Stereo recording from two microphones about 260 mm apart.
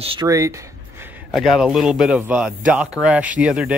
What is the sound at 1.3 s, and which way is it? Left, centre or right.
Speech, centre.